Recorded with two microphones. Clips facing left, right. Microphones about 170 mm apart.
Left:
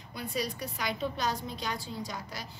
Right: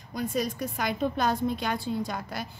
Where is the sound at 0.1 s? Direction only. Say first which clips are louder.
Right 6 dB; 45° right (ahead or behind).